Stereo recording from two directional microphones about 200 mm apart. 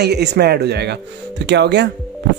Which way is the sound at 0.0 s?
55° right (ahead or behind).